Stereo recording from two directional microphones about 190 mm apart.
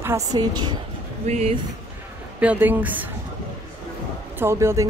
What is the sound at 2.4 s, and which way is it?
Speech, 10° right (ahead or behind).